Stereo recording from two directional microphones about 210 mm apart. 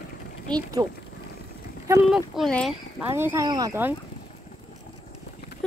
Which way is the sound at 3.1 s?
10° right (ahead or behind).